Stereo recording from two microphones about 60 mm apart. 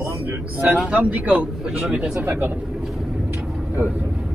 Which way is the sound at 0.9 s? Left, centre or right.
Right.